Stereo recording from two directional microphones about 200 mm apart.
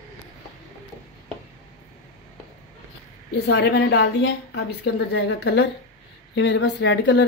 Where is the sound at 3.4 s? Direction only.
60° left (ahead or behind).